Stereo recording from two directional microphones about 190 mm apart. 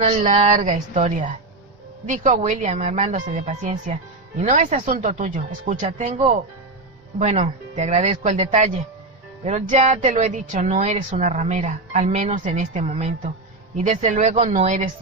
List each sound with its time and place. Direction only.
0.0 s a woman's voice: 30° right (ahead or behind)